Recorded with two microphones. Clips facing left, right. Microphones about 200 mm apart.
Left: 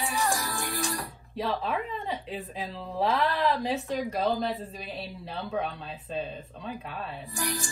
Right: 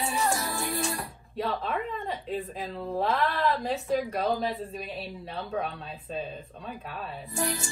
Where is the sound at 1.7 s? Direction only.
Centre (ahead or behind).